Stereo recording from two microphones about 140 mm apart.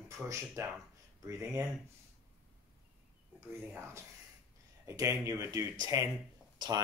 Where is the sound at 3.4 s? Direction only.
15° right (ahead or behind).